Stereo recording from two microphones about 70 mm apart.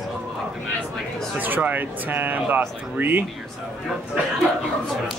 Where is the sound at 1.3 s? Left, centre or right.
Right.